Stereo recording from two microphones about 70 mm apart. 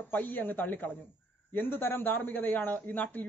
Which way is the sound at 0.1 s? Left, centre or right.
Left.